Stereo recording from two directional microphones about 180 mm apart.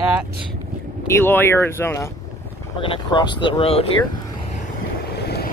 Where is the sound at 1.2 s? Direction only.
10° left (ahead or behind).